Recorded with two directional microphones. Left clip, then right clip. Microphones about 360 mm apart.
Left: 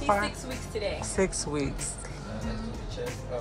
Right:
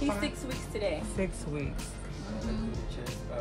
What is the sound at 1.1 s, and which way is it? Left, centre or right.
Music, centre.